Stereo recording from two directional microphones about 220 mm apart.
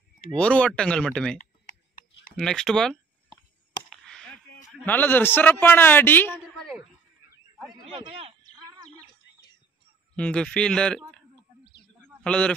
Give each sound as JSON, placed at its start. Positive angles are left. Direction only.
{"t": 0.4, "sound": "speech", "side_deg": 5}
{"t": 3.9, "sound": "a sound", "side_deg": 5}
{"t": 7.5, "sound": "a man's voice", "side_deg": 0}
{"t": 8.0, "sound": "speech", "side_deg": -25}
{"t": 10.1, "sound": "a sound", "side_deg": 5}
{"t": 12.2, "sound": "a man's voice", "side_deg": 5}